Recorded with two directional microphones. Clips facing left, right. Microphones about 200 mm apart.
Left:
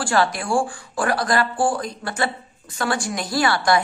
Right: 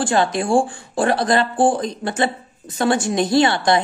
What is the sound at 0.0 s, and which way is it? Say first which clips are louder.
Speech: right 3 dB; 20° right (ahead or behind).